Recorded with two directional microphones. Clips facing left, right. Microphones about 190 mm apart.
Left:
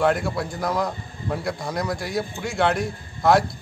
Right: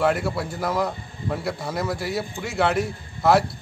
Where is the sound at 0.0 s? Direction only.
5° right (ahead or behind).